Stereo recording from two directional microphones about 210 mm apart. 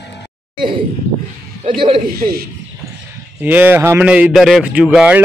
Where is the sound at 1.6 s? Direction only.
25° right (ahead or behind).